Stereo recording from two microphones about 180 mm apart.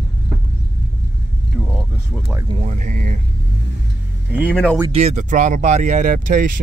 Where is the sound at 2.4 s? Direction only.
35° right (ahead or behind).